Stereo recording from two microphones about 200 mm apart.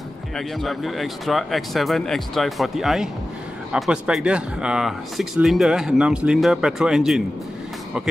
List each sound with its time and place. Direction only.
0.4 s speech: centre (ahead or behind)